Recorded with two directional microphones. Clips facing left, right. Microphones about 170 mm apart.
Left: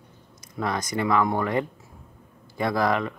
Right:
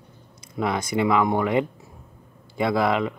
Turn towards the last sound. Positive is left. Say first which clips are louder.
# right 2 dB
turn(degrees=-15)  # may be behind; listen again after turning